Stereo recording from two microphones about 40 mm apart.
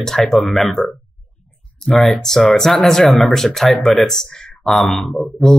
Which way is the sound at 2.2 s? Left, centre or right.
Centre.